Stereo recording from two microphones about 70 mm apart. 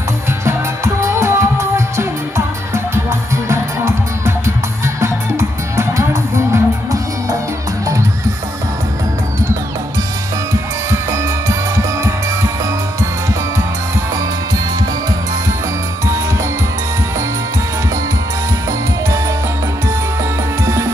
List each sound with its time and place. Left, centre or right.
0.5 s music: right
10.5 s music: right
20.6 s music: right